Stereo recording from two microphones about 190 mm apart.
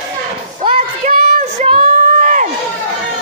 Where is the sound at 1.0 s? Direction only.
45° right (ahead or behind).